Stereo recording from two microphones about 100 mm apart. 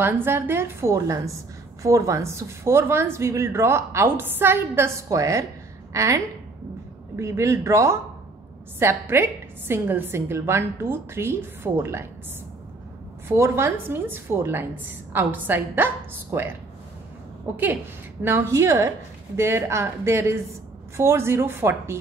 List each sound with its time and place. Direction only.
0.0 s a woman's voice: 20° right (ahead or behind)
13.3 s a woman's voice: 25° right (ahead or behind)
17.5 s a woman's voice: 15° right (ahead or behind)